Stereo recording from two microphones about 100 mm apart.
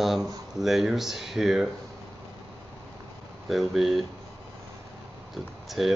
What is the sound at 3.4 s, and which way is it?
Speech, centre (ahead or behind).